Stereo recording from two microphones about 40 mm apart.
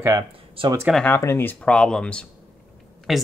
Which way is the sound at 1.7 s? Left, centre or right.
Centre.